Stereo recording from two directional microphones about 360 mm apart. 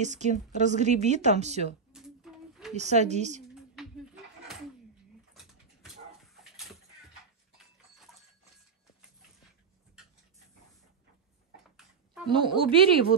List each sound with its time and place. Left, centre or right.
0.0 s a woman's voice: centre
1.9 s a sound: centre
2.7 s a woman's voice: centre
5.3 s dog: centre
11.7 s a sound: centre
12.3 s a woman's voice: centre